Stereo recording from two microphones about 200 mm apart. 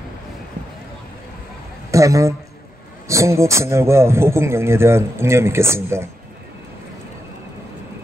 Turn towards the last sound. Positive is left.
turn(degrees=-15)  # may be behind; listen again after turning